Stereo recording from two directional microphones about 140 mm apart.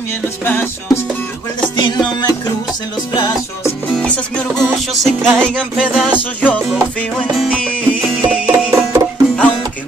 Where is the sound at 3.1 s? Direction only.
35° left (ahead or behind).